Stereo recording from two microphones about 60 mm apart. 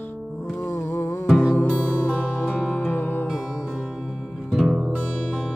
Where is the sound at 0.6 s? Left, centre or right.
Left.